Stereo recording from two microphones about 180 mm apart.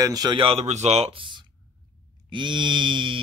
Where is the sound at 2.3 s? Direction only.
25° right (ahead or behind).